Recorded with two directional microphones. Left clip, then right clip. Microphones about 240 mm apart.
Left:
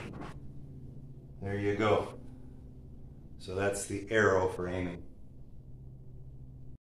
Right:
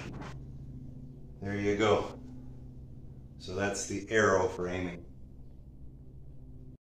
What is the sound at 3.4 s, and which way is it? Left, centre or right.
Speech, left.